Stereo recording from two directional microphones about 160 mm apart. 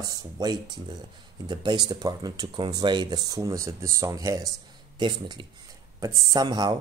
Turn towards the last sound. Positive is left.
turn(degrees=-25)  # may be behind; listen again after turning